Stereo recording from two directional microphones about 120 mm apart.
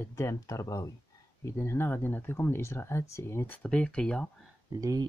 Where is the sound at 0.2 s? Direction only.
25° left (ahead or behind).